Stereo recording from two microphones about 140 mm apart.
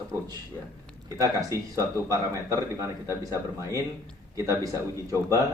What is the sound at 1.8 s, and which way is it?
Speech, 20° right (ahead or behind).